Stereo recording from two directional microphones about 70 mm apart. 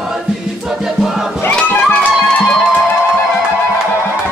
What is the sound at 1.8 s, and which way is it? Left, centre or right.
Music, centre.